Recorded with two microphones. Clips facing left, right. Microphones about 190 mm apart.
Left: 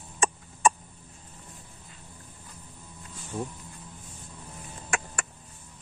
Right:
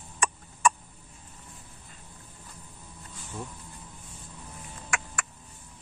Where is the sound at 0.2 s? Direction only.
25° left (ahead or behind).